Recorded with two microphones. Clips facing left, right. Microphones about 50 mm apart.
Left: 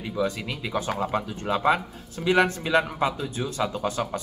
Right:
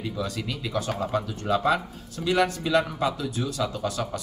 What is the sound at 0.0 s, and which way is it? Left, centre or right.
Speech, left.